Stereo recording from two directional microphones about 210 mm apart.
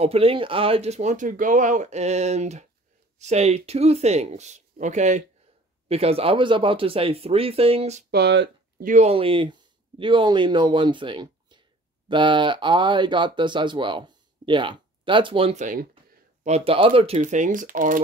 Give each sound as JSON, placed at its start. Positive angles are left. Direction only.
{"t": 0.0, "sound": "speech", "side_deg": -25}
{"t": 8.1, "sound": "speech", "side_deg": -50}